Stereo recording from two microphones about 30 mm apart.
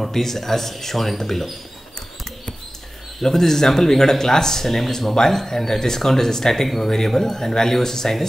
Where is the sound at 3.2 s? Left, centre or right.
Centre.